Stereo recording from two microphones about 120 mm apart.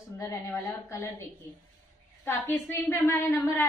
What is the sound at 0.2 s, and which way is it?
Speech, 25° left (ahead or behind).